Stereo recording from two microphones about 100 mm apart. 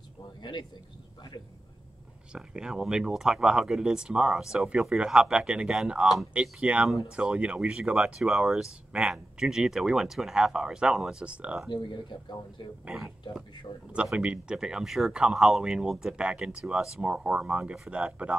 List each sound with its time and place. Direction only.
0.4 s speech: 50° left (ahead or behind)
2.3 s speech: 5° right (ahead or behind)
11.7 s speech: 55° left (ahead or behind)
12.8 s speech: centre (ahead or behind)